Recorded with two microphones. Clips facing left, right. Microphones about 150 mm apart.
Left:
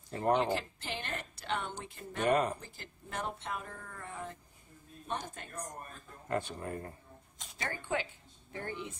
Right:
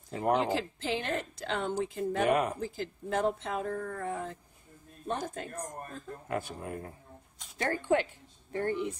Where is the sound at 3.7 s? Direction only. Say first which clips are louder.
Right 13 dB; 50° right (ahead or behind).